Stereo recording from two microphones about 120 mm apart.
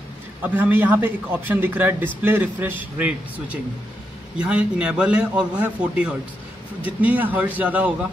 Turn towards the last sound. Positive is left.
turn(degrees=-10)  # may be behind; listen again after turning